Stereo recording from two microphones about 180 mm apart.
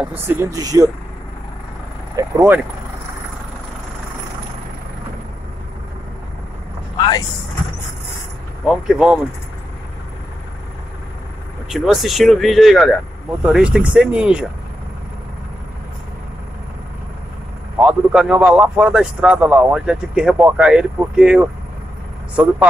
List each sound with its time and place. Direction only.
0.0 s speech: 10° right (ahead or behind)
2.1 s speech: 10° right (ahead or behind)
7.0 s speech: 25° left (ahead or behind)
8.6 s a man's voice: 5° right (ahead or behind)
11.7 s a man's voice: centre (ahead or behind)
17.7 s a man's voice: 5° right (ahead or behind)